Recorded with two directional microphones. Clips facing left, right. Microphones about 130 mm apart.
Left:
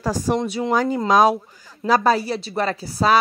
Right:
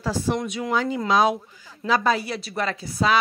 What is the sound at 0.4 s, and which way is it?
Speech, 30° left (ahead or behind).